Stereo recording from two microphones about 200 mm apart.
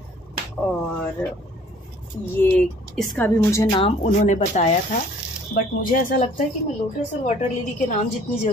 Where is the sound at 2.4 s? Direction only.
10° left (ahead or behind); by 4.7 s 35° left (ahead or behind).